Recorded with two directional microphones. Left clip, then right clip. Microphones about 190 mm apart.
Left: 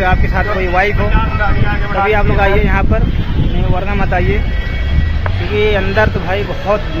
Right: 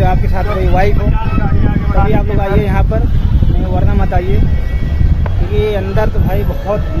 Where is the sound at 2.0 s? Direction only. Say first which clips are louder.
Left 6 dB; 15° right (ahead or behind).